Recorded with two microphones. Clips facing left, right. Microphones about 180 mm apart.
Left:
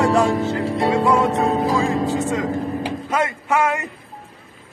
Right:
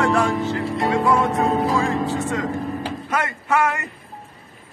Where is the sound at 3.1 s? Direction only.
20° left (ahead or behind).